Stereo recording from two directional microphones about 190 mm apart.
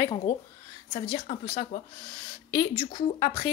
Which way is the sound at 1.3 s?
35° left (ahead or behind).